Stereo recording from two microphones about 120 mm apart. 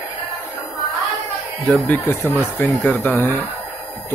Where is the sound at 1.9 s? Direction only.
20° left (ahead or behind).